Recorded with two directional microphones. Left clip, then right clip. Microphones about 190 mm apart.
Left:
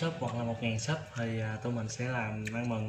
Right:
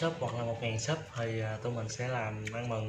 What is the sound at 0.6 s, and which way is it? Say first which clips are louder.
Speech: right 1 dB; 25° right (ahead or behind).